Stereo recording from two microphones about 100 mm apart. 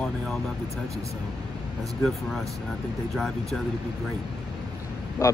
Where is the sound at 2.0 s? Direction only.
5° left (ahead or behind).